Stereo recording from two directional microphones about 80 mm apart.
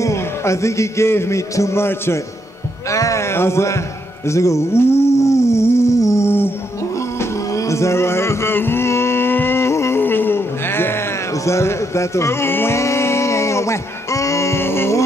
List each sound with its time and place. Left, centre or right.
0.0 s a man's voice: left
4.3 s a sound: left
7.2 s music: left